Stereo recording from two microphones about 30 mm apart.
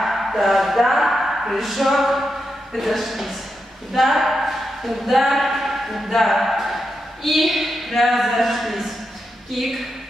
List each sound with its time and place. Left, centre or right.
0.0 s speech: centre